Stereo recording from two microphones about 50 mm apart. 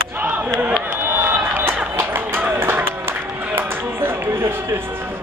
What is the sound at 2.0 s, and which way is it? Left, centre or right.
Run, right.